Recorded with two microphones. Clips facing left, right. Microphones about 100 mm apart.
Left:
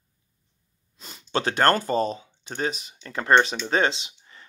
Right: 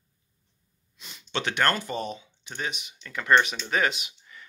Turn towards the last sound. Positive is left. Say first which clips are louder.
# right 1 dB
turn(degrees=35)  # may be behind; listen again after turning